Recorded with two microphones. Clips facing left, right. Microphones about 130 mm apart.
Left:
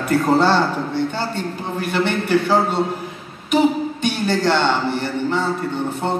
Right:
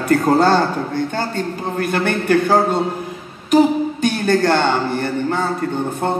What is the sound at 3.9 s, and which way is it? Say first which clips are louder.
A man's voice: right 4 dB; 45° right (ahead or behind).